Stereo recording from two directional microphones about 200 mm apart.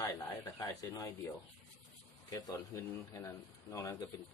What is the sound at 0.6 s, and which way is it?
Speech, 15° left (ahead or behind).